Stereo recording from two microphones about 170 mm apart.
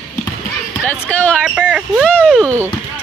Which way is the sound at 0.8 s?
10° left (ahead or behind).